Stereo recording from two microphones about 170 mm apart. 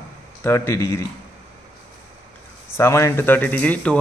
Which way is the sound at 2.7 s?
15° left (ahead or behind).